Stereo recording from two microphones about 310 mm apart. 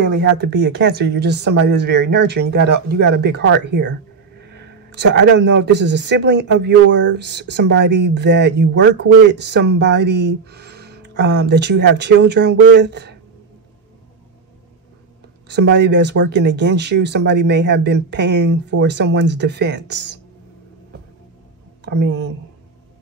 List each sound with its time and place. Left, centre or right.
0.1 s speech: right
15.4 s speech: right